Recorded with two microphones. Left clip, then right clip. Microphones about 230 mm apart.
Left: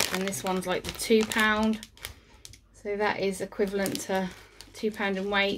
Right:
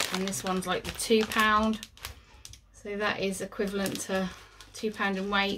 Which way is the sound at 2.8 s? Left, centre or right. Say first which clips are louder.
Left 3 dB; centre.